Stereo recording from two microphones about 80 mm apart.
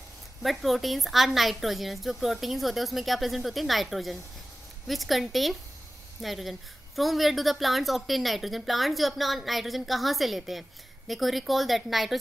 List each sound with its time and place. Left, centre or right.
0.4 s a woman's voice: centre